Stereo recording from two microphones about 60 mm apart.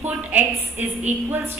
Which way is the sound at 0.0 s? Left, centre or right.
Right.